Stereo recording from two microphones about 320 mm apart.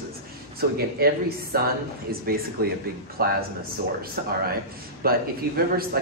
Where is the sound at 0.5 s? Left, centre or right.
Right.